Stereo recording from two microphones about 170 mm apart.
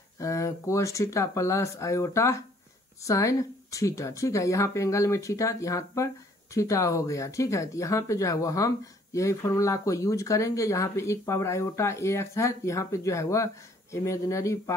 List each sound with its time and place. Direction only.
0.2 s speech: 20° left (ahead or behind)